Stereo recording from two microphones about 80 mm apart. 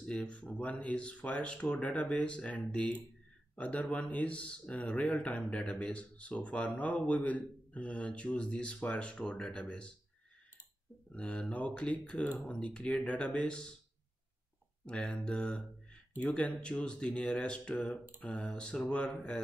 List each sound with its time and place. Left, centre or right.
0.0 s speech: centre
11.1 s speech: centre
14.9 s speech: centre